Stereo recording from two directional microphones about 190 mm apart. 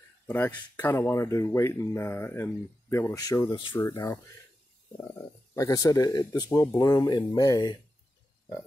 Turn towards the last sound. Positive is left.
turn(degrees=20)  # may be behind; listen again after turning